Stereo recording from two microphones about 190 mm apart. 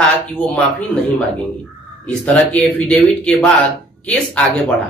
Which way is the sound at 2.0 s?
5° left (ahead or behind).